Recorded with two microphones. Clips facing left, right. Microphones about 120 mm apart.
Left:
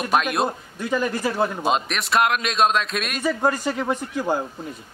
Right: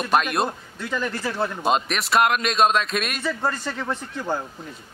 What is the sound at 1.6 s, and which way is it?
A man's voice, centre (ahead or behind).